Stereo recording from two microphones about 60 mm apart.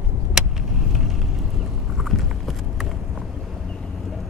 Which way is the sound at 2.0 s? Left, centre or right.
Centre.